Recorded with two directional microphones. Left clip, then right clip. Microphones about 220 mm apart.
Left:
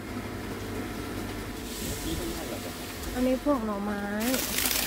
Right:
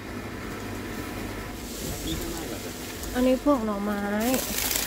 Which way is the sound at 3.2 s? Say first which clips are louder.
Right 5 dB; 25° right (ahead or behind).